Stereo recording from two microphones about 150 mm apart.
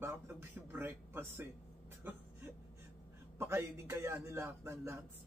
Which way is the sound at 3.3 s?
15° right (ahead or behind).